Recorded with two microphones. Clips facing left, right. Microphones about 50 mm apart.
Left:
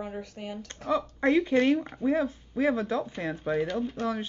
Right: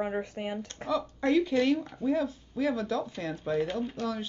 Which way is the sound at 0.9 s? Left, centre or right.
Left.